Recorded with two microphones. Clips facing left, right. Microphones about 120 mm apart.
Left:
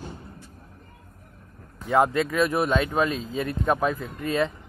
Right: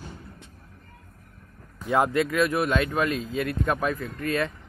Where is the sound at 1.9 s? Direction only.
20° left (ahead or behind).